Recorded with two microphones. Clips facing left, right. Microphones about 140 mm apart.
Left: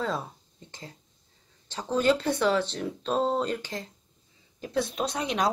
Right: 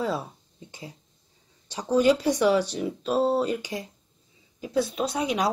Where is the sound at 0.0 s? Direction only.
10° right (ahead or behind).